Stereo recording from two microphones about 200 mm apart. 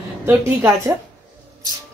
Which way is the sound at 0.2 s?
10° right (ahead or behind).